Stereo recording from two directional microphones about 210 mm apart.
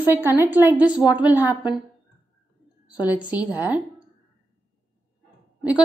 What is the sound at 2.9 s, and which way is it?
Speech, 5° right (ahead or behind).